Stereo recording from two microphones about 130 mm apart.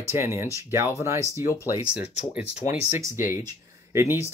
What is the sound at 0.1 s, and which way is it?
Speech, 20° right (ahead or behind).